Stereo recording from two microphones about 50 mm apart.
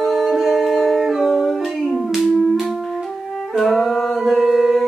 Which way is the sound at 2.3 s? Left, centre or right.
Centre.